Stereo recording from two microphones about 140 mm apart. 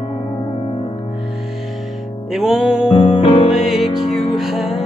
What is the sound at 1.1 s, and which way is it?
Music, centre (ahead or behind).